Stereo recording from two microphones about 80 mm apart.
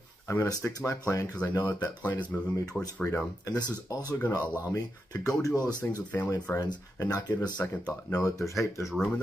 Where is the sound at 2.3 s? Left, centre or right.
Left.